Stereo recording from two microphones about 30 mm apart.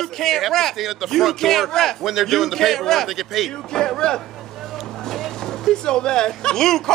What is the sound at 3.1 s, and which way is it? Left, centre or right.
Speech, centre.